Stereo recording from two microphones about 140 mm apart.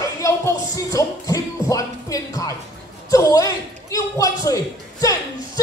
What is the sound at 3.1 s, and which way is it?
A man's voice, 25° left (ahead or behind).